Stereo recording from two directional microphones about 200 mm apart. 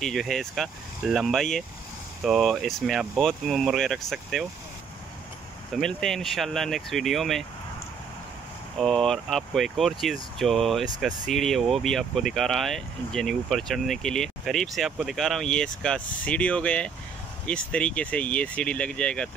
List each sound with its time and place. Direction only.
0.0 s speech: centre (ahead or behind)
5.7 s speech: centre (ahead or behind)
8.7 s speech: centre (ahead or behind)